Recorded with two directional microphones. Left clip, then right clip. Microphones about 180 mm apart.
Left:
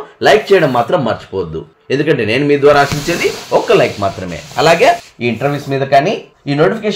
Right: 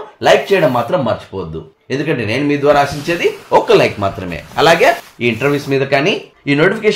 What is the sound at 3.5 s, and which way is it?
Speech, 10° right (ahead or behind).